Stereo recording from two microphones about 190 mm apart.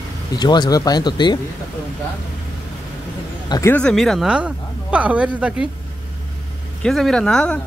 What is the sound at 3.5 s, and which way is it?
Speech, 10° left (ahead or behind).